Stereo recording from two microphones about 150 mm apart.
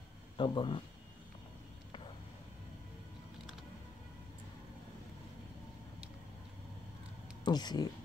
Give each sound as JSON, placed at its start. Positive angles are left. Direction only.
{"t": 0.4, "sound": "speech", "side_deg": 35}
{"t": 7.4, "sound": "speech", "side_deg": 30}